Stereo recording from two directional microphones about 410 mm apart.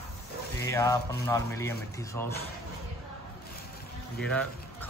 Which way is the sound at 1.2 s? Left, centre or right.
Centre.